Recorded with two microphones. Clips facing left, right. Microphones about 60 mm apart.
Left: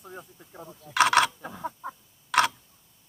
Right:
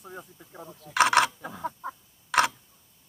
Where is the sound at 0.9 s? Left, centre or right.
Centre.